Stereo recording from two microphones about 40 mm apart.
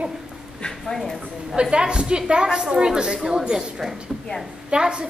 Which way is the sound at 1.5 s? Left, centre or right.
Right.